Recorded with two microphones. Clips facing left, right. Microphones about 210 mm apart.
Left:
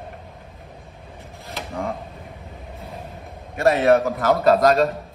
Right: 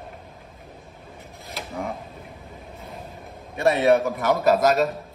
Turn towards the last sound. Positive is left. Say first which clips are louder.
# left 3 dB
turn(degrees=-5)  # may be behind; listen again after turning